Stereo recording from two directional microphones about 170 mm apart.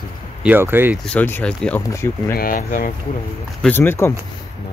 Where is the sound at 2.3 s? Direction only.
55° left (ahead or behind).